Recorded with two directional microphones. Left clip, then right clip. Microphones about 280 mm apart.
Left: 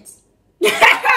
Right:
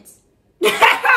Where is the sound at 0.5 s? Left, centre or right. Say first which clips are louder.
Left 1 dB; centre.